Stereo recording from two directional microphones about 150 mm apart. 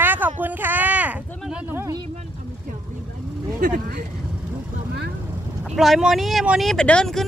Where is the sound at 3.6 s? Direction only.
90° right.